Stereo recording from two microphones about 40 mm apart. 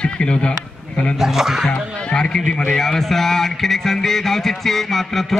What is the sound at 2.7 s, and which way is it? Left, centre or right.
Music, centre.